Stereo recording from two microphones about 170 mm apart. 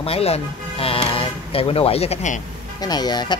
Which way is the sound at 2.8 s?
25° left (ahead or behind).